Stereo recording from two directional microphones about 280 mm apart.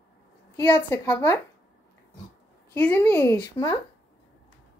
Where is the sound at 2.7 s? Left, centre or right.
Centre.